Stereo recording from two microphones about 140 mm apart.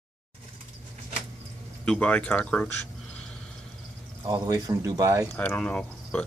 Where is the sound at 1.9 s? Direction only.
10° left (ahead or behind).